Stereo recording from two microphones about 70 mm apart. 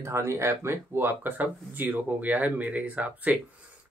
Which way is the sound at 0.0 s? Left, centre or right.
Right.